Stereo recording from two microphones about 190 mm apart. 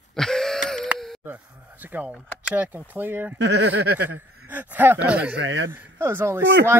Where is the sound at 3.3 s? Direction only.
65° right (ahead or behind).